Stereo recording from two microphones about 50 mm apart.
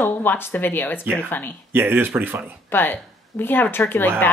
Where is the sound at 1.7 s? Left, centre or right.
Right.